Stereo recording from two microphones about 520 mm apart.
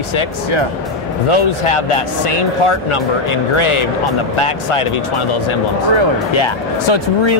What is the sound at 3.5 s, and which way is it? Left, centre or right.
Speech, left.